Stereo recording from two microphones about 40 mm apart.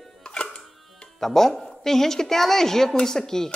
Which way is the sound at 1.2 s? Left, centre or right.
Centre.